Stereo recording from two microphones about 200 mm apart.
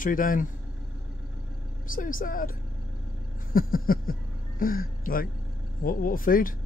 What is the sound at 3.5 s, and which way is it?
Speech, 45° left (ahead or behind).